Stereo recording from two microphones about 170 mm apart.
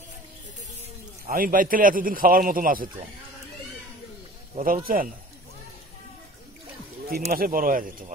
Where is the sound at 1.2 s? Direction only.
55° right (ahead or behind).